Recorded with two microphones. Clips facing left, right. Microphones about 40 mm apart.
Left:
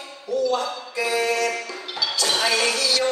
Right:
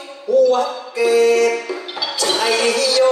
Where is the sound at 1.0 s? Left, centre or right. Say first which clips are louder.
Right 9 dB; centre.